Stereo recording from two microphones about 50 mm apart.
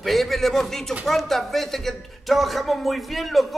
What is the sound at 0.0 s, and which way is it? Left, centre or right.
A man's voice, centre.